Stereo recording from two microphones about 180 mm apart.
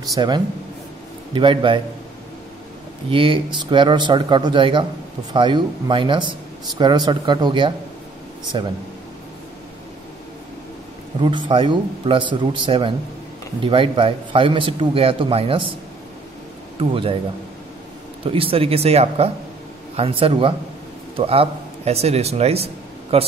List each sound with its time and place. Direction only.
0.0 s speech: 20° right (ahead or behind)
3.1 s speech: 30° right (ahead or behind)
11.1 s speech: 25° right (ahead or behind)
16.7 s speech: 30° right (ahead or behind)
18.2 s speech: 30° right (ahead or behind)